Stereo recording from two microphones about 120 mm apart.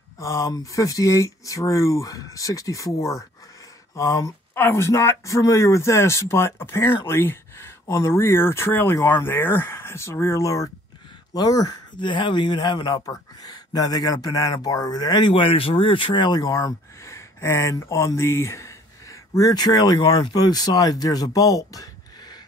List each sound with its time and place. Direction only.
0.2 s speech: 25° left (ahead or behind)